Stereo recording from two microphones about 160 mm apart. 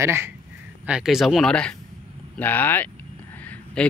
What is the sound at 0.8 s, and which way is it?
Speech, 5° right (ahead or behind).